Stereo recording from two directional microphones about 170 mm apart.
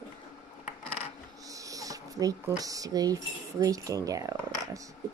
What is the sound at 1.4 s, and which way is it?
Speech, 20° right (ahead or behind).